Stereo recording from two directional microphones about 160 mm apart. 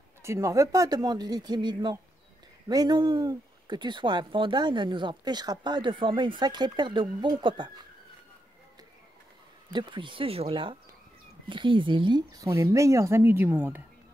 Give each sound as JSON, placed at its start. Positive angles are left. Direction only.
{"t": 0.2, "sound": "speech", "side_deg": -20}
{"t": 9.7, "sound": "speech", "side_deg": -30}